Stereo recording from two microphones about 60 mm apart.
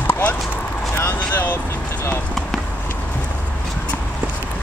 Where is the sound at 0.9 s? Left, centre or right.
Left.